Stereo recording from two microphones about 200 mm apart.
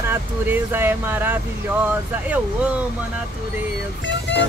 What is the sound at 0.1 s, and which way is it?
Speech, 10° right (ahead or behind).